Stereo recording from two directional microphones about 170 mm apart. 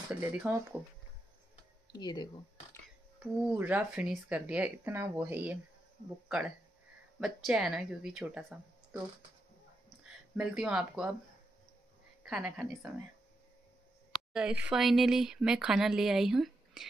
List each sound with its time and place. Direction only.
0.1 s speech: 10° right (ahead or behind)
1.9 s speech: 25° left (ahead or behind)
3.4 s speech: 10° right (ahead or behind)
7.2 s speech: centre (ahead or behind)
10.3 s speech: 5° right (ahead or behind)
12.3 s speech: 5° right (ahead or behind)
14.3 s speech: 5° right (ahead or behind)